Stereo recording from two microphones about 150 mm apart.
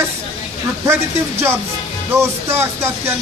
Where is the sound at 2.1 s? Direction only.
15° right (ahead or behind).